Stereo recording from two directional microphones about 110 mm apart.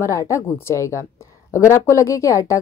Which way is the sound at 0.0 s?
30° left (ahead or behind).